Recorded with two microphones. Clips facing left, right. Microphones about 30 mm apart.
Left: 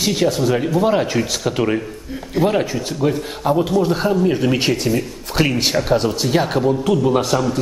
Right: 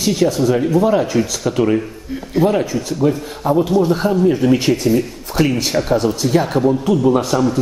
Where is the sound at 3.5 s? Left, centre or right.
Left.